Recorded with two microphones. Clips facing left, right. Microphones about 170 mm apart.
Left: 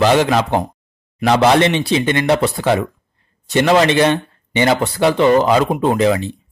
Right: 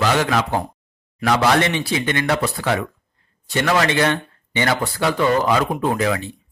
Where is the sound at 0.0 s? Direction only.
25° left (ahead or behind).